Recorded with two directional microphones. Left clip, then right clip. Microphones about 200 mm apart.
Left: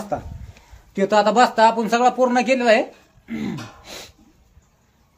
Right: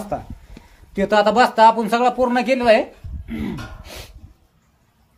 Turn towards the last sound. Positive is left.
turn(degrees=-10)  # may be behind; listen again after turning